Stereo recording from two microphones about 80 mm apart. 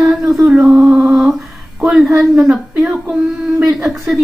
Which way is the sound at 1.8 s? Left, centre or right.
Centre.